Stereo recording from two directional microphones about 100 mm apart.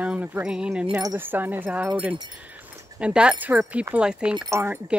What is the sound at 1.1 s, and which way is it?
Wind chime, 20° right (ahead or behind).